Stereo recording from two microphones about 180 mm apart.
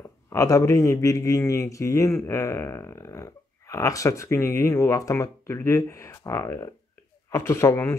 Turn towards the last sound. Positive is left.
turn(degrees=15)  # may be behind; listen again after turning